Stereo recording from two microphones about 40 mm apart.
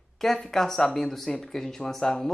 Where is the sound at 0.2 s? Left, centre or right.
Centre.